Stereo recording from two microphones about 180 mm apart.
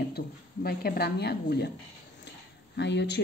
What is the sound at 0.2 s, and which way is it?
A woman's voice, 55° left (ahead or behind).